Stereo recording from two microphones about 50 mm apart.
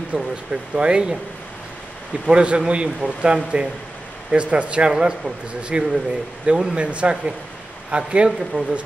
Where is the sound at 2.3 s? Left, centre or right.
Right.